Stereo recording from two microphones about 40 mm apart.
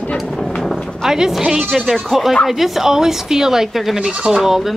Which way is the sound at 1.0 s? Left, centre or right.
Centre.